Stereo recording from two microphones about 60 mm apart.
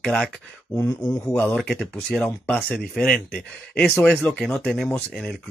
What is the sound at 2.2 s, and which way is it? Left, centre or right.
Speech, left.